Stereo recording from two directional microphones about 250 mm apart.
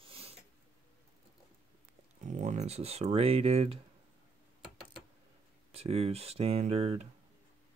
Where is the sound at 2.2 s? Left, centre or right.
Right.